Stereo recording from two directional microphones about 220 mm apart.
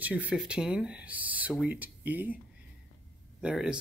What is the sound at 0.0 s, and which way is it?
Speech, 5° right (ahead or behind).